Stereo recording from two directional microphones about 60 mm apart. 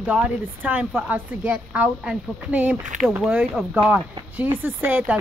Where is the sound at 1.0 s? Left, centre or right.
Right.